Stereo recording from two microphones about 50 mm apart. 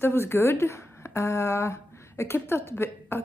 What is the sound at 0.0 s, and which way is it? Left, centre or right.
A woman's voice, left.